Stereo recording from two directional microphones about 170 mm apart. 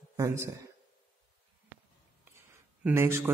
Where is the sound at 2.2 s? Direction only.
15° right (ahead or behind).